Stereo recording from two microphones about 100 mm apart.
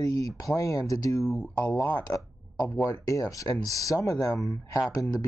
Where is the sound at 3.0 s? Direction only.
35° left (ahead or behind).